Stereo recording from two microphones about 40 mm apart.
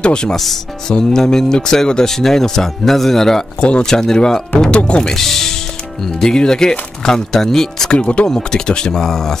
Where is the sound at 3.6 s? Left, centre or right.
Left.